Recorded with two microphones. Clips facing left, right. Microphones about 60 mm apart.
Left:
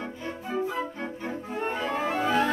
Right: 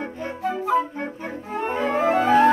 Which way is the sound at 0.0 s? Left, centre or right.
Right.